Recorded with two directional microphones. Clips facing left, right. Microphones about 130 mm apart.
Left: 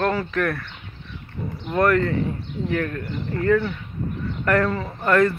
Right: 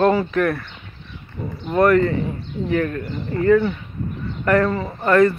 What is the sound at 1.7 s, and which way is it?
Speech, 5° right (ahead or behind).